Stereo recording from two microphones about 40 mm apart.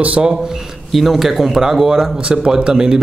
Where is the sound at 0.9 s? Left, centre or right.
Centre.